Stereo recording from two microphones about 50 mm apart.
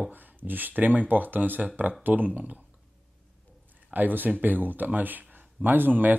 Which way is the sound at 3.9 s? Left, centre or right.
Right.